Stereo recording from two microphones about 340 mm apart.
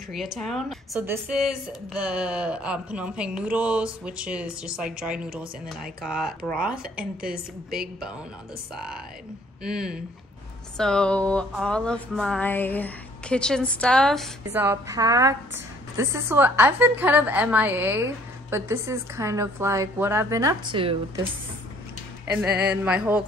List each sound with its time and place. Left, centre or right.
0.1 s speech: centre
7.2 s a woman's voice: right
9.6 s a woman's voice: centre
22.8 s speech: centre